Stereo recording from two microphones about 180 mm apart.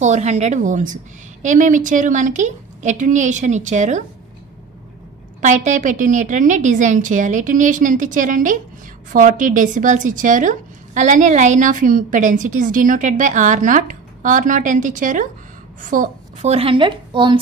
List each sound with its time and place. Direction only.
0.0 s a woman's voice: 40° right (ahead or behind)
5.4 s a woman's voice: 40° right (ahead or behind); by 17.4 s 25° right (ahead or behind)